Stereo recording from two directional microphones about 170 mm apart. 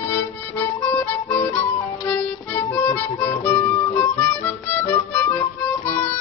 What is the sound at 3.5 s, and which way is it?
Harmonica, 15° left (ahead or behind).